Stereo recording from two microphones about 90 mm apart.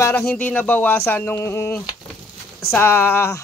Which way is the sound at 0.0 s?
30° left (ahead or behind).